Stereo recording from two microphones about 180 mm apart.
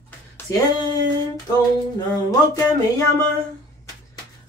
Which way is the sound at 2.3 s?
20° left (ahead or behind).